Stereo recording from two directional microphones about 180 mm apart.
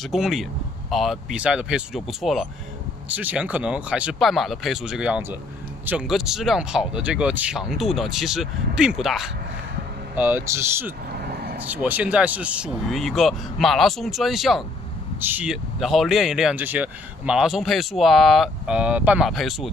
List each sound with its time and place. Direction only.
0.1 s speech: centre (ahead or behind)
11.1 s vehicle: 60° right (ahead or behind)
11.6 s speech: 10° right (ahead or behind)